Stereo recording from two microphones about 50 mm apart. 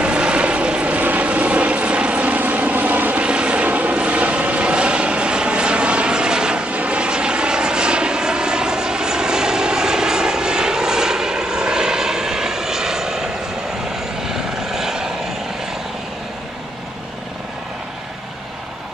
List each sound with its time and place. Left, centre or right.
0.0 s vehicle: right